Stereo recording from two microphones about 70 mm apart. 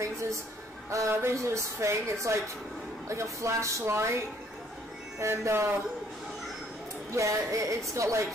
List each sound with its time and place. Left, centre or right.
0.8 s a woman's voice: right
5.2 s speech: right
7.1 s a woman's voice: right